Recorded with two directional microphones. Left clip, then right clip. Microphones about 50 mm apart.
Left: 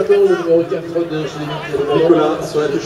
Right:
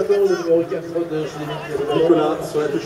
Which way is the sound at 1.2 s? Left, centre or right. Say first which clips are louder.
Left 3 dB; right.